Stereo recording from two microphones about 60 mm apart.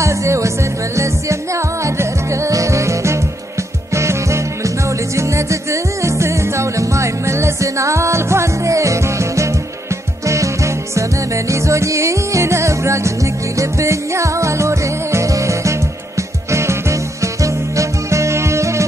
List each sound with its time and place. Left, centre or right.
0.0 s music: right